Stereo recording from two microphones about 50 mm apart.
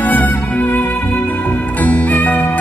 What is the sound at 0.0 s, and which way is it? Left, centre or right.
Music, left.